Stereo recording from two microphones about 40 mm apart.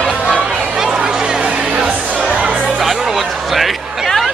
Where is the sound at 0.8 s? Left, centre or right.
Centre.